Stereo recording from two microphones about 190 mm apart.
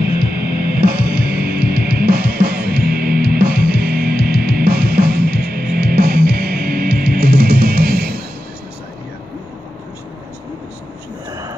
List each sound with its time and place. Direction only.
0.0 s music: 55° right (ahead or behind)